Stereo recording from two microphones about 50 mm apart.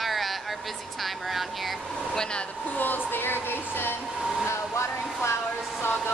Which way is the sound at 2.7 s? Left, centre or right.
Left.